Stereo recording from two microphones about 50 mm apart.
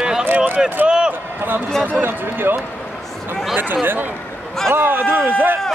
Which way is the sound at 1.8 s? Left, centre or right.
Right.